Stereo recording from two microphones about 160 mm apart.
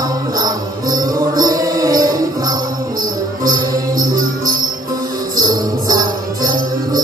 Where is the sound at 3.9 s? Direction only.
60° right (ahead or behind).